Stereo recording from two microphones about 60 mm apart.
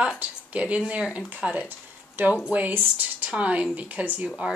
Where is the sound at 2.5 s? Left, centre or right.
Right.